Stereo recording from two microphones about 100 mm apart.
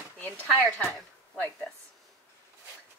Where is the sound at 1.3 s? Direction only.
15° left (ahead or behind).